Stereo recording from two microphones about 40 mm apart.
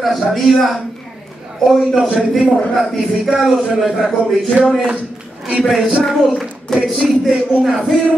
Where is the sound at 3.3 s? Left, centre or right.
Centre.